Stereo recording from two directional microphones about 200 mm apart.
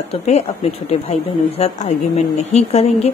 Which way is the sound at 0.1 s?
35° left (ahead or behind).